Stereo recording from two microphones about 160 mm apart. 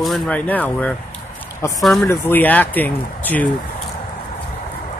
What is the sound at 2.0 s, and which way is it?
Speech, 15° left (ahead or behind).